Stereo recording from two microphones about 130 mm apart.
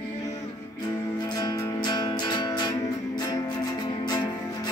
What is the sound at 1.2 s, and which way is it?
Music, 30° left (ahead or behind).